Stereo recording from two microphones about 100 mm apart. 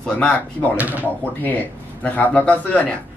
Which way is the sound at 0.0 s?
10° left (ahead or behind).